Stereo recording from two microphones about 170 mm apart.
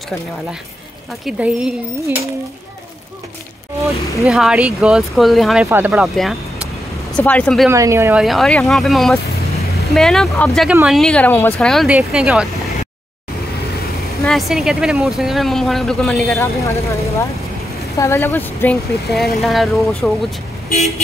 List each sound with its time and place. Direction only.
1.2 s speech: 5° right (ahead or behind)
4.2 s speech: centre (ahead or behind)
7.7 s speech: 15° right (ahead or behind)
8.2 s speech: centre (ahead or behind)
10.7 s speech: 10° right (ahead or behind)
11.0 s speech: 5° left (ahead or behind)
14.2 s speech: centre (ahead or behind)
16.3 s speech: 15° left (ahead or behind)
19.0 s speech: centre (ahead or behind)